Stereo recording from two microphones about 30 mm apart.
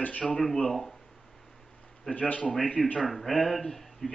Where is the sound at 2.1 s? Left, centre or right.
Left.